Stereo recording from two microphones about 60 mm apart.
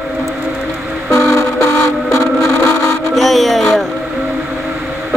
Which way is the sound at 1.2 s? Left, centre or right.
Left.